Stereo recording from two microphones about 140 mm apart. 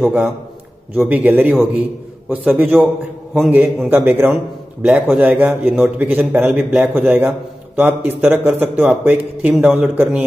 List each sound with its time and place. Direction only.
0.9 s a man's voice: 10° right (ahead or behind)